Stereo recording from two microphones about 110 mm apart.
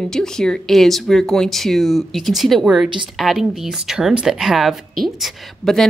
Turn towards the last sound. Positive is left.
turn(degrees=0)  # may be behind; listen again after turning